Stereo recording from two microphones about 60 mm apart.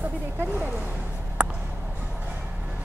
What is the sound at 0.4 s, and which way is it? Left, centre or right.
Speech, right.